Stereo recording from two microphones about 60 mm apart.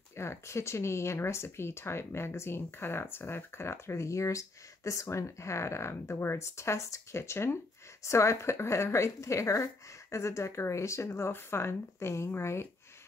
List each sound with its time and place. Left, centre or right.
0.1 s speech: left